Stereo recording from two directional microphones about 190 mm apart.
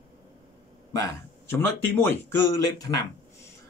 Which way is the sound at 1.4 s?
10° left (ahead or behind).